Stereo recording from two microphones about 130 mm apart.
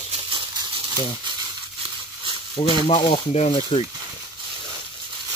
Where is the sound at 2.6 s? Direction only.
40° left (ahead or behind).